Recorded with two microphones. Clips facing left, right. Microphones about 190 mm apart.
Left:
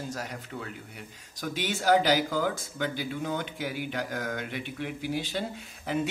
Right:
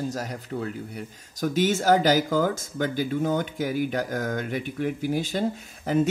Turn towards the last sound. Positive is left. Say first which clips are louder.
# right 7 dB
turn(degrees=-40)  # may be behind; listen again after turning